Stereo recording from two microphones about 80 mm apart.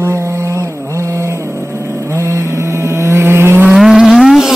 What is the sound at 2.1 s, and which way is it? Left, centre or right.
Vehicle, right.